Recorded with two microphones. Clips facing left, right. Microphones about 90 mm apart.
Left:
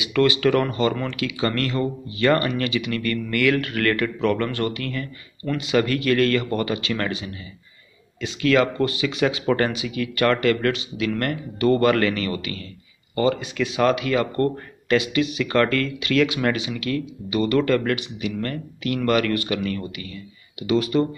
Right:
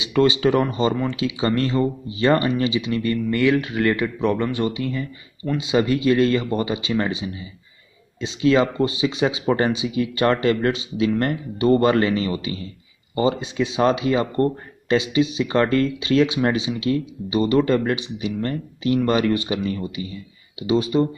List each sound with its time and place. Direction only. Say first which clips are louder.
0.0 s speech: right 1 dB; 25° right (ahead or behind)